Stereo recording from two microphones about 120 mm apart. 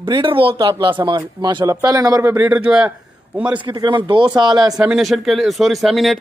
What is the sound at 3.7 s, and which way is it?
Speech, 40° right (ahead or behind).